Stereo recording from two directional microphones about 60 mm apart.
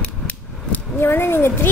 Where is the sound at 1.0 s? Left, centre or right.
Left.